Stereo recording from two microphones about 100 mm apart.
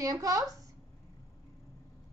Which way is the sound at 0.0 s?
35° right (ahead or behind).